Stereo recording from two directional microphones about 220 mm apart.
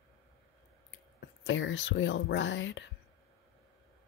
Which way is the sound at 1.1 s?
55° left (ahead or behind).